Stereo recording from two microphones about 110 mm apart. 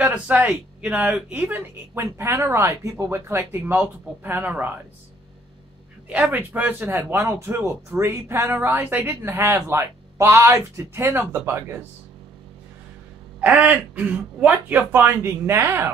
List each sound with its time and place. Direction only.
0.0 s speech: 15° right (ahead or behind)
6.0 s speech: 10° right (ahead or behind)
13.4 s speech: 15° right (ahead or behind)